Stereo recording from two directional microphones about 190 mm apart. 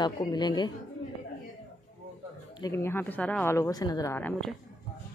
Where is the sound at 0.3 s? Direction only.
20° left (ahead or behind).